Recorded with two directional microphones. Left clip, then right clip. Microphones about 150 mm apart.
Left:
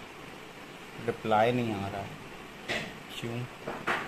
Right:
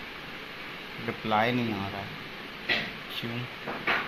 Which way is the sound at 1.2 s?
20° left (ahead or behind).